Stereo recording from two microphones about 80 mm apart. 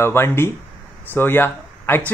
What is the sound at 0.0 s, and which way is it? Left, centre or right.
Speech, left.